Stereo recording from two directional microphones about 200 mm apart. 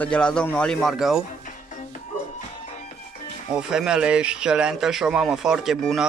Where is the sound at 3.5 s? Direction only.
5° right (ahead or behind).